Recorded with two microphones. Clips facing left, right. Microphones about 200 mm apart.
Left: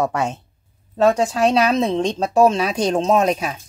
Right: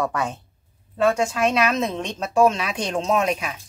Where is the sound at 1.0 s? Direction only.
35° left (ahead or behind).